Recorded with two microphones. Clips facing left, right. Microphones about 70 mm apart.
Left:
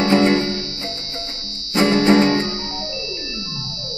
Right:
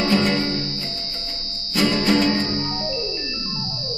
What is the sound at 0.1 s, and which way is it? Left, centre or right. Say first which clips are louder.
Music: left 6 dB; left.